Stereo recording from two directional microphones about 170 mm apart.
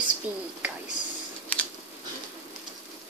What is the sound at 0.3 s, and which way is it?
Speech, 10° right (ahead or behind).